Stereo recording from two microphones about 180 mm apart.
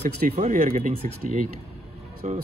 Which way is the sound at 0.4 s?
50° right (ahead or behind).